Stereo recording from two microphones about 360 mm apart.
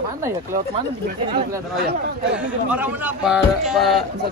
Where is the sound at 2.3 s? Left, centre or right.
Centre.